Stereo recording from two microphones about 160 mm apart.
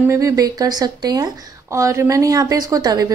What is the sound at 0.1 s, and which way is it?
Speech, 20° right (ahead or behind).